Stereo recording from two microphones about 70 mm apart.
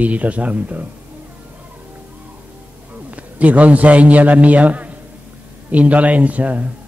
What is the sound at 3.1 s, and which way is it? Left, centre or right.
A man's voice, right.